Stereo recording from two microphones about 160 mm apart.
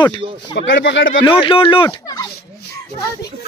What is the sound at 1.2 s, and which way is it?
Speech, 35° left (ahead or behind).